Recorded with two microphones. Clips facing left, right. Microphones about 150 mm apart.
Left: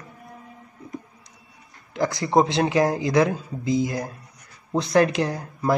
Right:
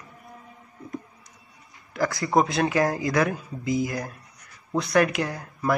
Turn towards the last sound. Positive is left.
turn(degrees=25)  # may be behind; listen again after turning